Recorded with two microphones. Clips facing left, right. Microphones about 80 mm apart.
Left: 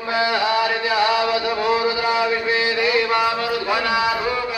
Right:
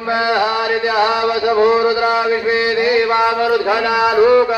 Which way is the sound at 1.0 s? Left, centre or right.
Right.